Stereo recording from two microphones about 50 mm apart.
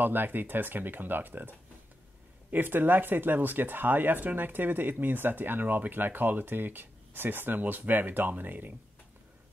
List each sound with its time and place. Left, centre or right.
0.0 s speech: right